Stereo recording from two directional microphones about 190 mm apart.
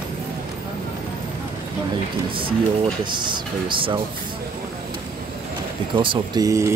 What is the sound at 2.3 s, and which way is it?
Speech, 25° right (ahead or behind).